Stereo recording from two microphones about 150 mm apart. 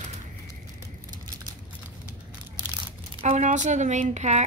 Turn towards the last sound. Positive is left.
turn(degrees=-50)  # may be behind; listen again after turning